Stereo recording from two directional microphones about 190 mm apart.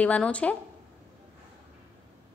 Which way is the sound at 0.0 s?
5° left (ahead or behind).